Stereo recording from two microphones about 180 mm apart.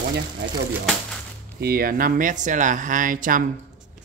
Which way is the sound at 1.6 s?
55° right (ahead or behind).